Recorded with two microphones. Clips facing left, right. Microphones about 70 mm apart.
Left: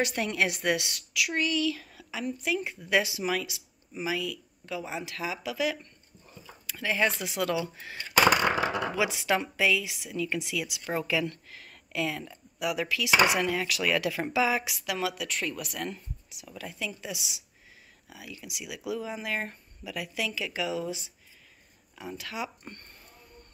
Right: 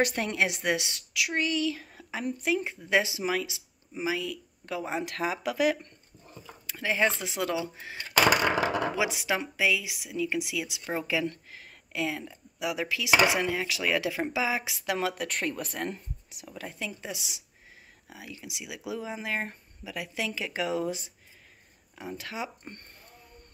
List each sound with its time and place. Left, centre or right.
0.0 s a woman's voice: right
2.0 s a woman's voice: right
4.6 s speech: right
6.7 s a woman's voice: right
15.0 s a woman's voice: right
21.9 s a woman's voice: right